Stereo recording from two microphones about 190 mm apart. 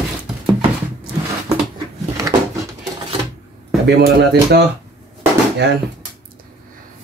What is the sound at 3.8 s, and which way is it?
Speech, 60° right (ahead or behind).